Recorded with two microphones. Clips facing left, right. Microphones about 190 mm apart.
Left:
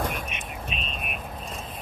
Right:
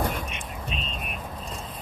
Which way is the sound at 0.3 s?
20° left (ahead or behind).